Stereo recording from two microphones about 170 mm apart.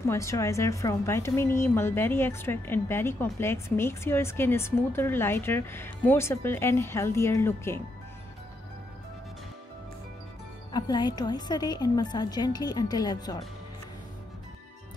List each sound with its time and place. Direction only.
0.1 s speech: 15° left (ahead or behind)
10.7 s a woman's voice: 25° left (ahead or behind)